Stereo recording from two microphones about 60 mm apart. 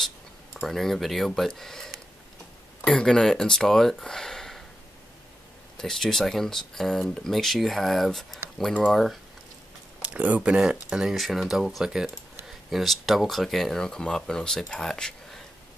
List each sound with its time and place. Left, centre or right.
0.6 s speech: centre
5.8 s speech: centre
10.0 s speech: right
10.7 s speech: centre